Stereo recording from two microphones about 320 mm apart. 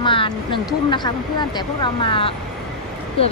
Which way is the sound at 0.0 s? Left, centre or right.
Centre.